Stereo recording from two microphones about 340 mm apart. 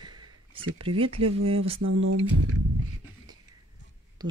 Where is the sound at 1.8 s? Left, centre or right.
Right.